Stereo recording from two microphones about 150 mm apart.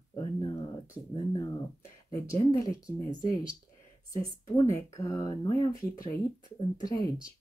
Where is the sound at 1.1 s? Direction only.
30° left (ahead or behind).